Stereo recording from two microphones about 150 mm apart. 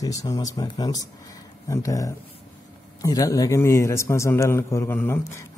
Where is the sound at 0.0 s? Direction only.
25° left (ahead or behind).